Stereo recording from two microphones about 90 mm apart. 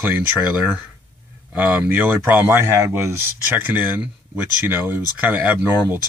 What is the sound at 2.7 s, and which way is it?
Speech, 35° right (ahead or behind).